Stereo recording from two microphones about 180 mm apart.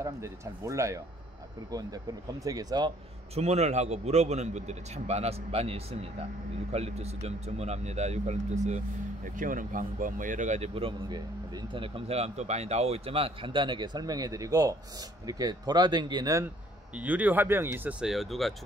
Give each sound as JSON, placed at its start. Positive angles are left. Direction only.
{"t": 0.0, "sound": "speech", "side_deg": -15}
{"t": 3.3, "sound": "speech", "side_deg": -35}
{"t": 16.9, "sound": "speech", "side_deg": -10}